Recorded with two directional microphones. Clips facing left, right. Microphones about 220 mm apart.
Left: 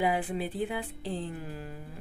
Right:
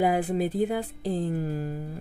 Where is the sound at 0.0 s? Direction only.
40° right (ahead or behind).